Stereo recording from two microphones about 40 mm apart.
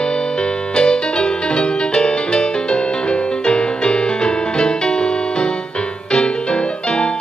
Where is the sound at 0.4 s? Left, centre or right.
Left.